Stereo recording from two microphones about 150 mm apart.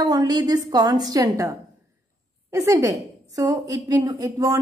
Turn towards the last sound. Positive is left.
turn(degrees=-25)  # may be behind; listen again after turning